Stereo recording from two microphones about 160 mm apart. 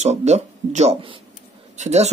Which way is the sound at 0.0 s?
45° right (ahead or behind).